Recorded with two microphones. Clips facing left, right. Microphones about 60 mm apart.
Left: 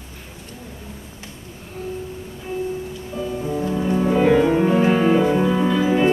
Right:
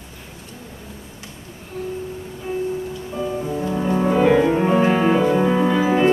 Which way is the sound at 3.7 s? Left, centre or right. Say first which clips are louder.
Right 1 dB; right.